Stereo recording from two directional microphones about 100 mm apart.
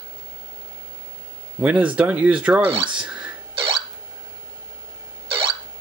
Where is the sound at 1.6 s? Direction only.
15° right (ahead or behind).